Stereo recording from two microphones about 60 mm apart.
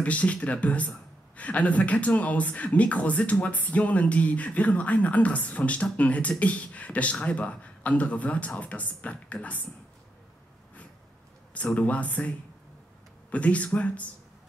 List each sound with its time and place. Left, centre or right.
0.0 s a man's voice: left
11.5 s a man's voice: left
13.3 s a man's voice: left